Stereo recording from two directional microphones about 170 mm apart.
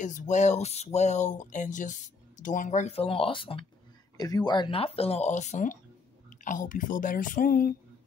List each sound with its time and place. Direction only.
0.0 s speech: 45° left (ahead or behind)